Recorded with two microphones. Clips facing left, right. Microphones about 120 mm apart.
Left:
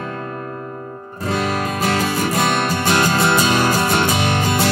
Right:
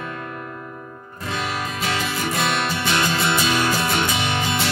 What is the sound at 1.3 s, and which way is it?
Music, 40° left (ahead or behind).